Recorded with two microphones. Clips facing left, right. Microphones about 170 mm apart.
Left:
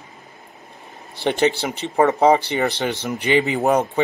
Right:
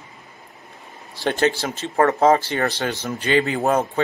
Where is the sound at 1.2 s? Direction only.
20° left (ahead or behind).